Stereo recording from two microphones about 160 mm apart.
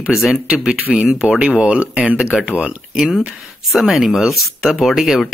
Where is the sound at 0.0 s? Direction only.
Centre (ahead or behind).